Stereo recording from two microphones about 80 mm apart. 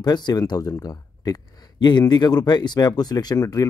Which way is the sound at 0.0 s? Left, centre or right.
Left.